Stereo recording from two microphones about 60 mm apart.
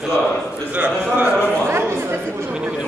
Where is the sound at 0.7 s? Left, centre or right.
Right.